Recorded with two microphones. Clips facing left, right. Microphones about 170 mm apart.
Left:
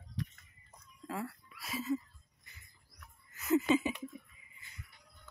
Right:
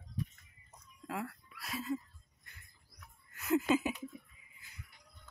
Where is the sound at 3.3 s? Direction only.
Centre (ahead or behind).